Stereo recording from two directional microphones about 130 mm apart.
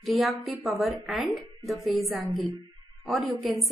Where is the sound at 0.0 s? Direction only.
Centre (ahead or behind).